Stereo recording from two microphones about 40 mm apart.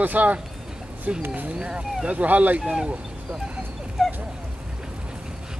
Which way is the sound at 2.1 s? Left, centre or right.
Right.